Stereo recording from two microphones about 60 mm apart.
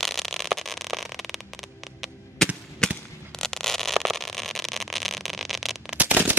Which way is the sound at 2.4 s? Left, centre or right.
Centre.